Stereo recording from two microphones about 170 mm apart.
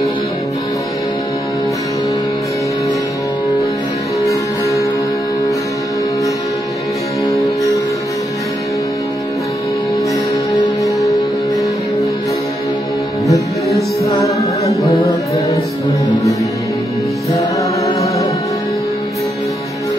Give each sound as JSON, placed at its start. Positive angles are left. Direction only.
{"t": 4.2, "sound": "music", "side_deg": 20}
{"t": 7.2, "sound": "music", "side_deg": 20}
{"t": 13.3, "sound": "music", "side_deg": 20}